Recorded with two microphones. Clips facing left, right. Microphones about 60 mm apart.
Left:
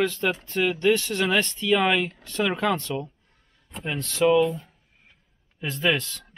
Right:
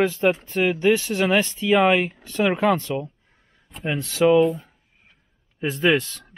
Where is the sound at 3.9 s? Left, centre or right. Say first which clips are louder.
Right 3 dB; centre.